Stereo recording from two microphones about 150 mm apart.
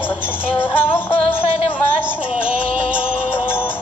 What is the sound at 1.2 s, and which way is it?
Music, 40° left (ahead or behind).